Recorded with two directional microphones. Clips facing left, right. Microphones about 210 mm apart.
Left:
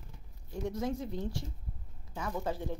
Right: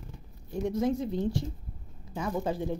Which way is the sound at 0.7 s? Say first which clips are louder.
Right 7 dB; 25° right (ahead or behind).